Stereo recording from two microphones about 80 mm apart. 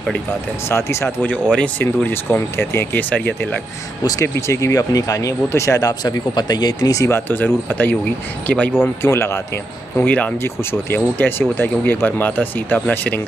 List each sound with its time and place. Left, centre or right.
0.7 s speech: left
1.2 s speech: centre
2.0 s speech: left
4.2 s speech: left
7.1 s speech: left
9.0 s speech: left
9.9 s speech: left